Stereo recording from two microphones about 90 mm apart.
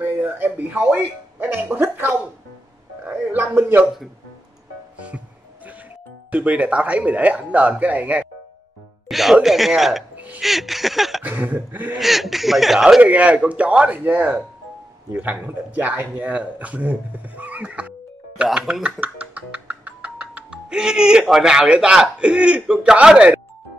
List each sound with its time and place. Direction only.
0.0 s speech: 20° right (ahead or behind)
4.9 s music: 15° right (ahead or behind)
6.3 s speech: 15° right (ahead or behind)
9.1 s speech: centre (ahead or behind)
10.1 s music: 20° right (ahead or behind)
10.4 s speech: centre (ahead or behind)
11.2 s a sound: 20° right (ahead or behind)
12.0 s speech: centre (ahead or behind)
13.0 s speech: 15° right (ahead or behind)